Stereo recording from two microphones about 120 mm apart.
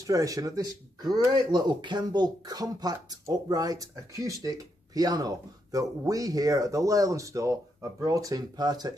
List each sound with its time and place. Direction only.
0.0 s speech: 30° right (ahead or behind)